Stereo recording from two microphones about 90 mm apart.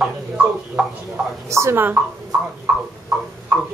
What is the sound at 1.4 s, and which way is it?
Speech, 30° right (ahead or behind).